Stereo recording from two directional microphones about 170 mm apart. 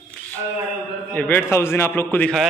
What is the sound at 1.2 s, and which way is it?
A man's voice, 10° left (ahead or behind).